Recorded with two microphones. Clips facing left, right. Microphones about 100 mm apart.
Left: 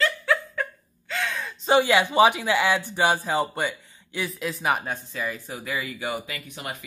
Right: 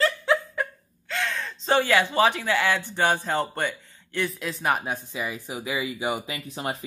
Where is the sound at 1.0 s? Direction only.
5° left (ahead or behind).